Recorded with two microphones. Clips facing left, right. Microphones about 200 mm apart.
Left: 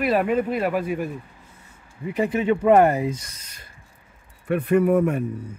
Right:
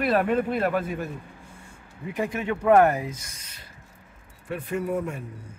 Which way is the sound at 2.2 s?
15° left (ahead or behind).